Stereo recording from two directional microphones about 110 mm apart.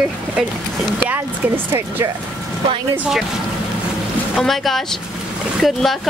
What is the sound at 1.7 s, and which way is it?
Speech, 20° right (ahead or behind).